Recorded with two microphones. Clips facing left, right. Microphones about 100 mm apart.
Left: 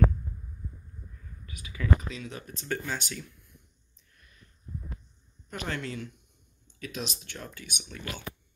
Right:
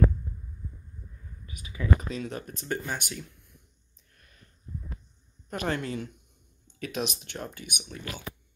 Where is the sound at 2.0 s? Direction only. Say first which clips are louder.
Right 5 dB; 45° right (ahead or behind).